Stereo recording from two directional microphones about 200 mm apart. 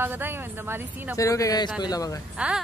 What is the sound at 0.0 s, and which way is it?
A woman's voice, 10° right (ahead or behind).